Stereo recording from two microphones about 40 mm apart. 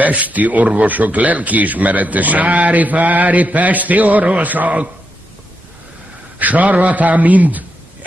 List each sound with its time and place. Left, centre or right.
0.0 s a man's voice: right
6.3 s a man's voice: right